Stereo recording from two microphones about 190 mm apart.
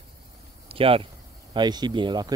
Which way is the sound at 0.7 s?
30° right (ahead or behind).